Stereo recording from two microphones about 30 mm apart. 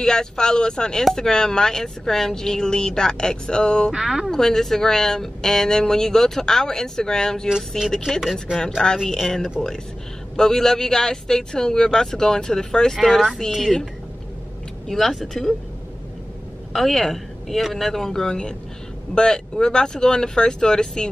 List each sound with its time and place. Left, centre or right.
0.0 s speech: left
4.0 s speech: centre
4.3 s speech: centre
8.2 s speech: centre
8.9 s speech: left
10.3 s speech: centre
12.9 s speech: centre
14.9 s speech: centre
15.1 s speech: centre
16.7 s speech: centre
19.1 s speech: left